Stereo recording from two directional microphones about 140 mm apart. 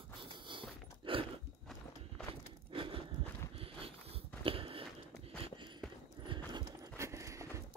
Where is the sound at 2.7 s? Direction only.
40° right (ahead or behind).